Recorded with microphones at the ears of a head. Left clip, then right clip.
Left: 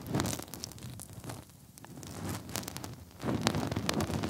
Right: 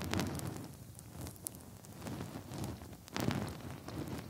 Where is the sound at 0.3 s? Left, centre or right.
Left.